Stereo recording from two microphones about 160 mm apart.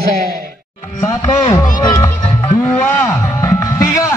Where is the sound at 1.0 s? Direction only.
25° left (ahead or behind).